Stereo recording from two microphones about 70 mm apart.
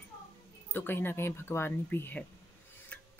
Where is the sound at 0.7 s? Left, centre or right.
Left.